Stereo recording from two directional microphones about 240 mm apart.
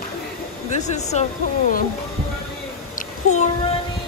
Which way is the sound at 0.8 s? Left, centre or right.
Left.